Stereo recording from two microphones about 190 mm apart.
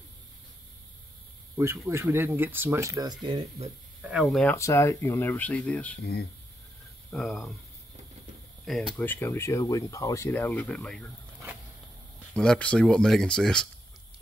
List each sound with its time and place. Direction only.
1.9 s speech: 10° right (ahead or behind)
4.0 s speech: 5° right (ahead or behind)
4.6 s speech: 15° left (ahead or behind)
7.1 s speech: centre (ahead or behind)
8.6 s speech: centre (ahead or behind)
8.9 s speech: 10° left (ahead or behind)
12.4 s speech: 5° left (ahead or behind)